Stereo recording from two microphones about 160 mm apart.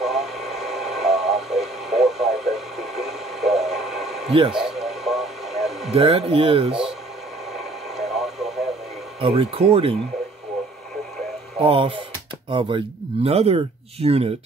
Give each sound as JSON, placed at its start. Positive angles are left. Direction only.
{"t": 0.0, "sound": "radio", "side_deg": 0}
{"t": 5.9, "sound": "speech", "side_deg": -35}
{"t": 7.5, "sound": "radio", "side_deg": 0}
{"t": 9.2, "sound": "speech", "side_deg": -35}
{"t": 11.6, "sound": "speech", "side_deg": -35}